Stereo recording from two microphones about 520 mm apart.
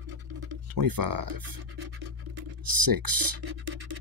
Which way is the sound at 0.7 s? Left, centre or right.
Right.